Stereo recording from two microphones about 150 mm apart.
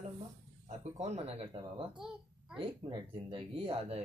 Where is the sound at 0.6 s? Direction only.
45° right (ahead or behind).